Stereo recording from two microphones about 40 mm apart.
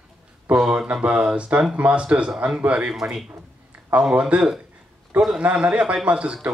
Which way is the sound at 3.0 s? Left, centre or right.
Right.